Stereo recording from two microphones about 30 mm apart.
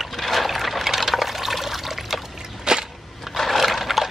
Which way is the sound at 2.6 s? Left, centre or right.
Right.